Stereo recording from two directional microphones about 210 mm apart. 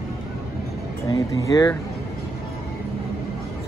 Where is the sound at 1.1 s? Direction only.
15° left (ahead or behind).